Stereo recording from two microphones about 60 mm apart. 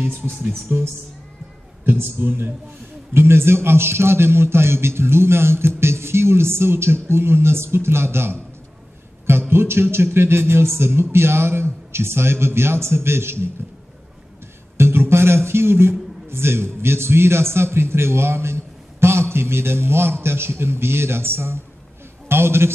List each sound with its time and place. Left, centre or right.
0.7 s a man's voice: right
1.9 s a man's voice: right
14.8 s a man's voice: right